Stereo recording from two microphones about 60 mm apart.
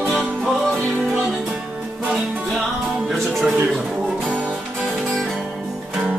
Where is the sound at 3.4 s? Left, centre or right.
Centre.